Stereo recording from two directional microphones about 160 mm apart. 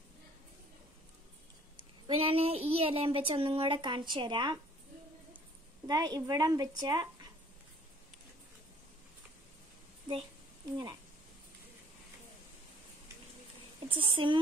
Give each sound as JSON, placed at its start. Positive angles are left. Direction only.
{"t": 1.8, "sound": "a woman's voice", "side_deg": -35}
{"t": 5.9, "sound": "a woman's voice", "side_deg": -25}
{"t": 13.8, "sound": "speech", "side_deg": -35}